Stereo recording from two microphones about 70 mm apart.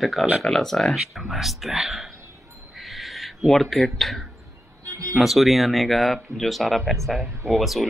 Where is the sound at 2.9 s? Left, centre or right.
Centre.